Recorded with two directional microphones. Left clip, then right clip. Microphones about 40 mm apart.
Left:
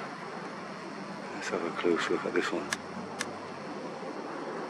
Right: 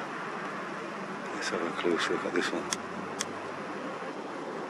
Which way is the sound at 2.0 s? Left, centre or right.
Right.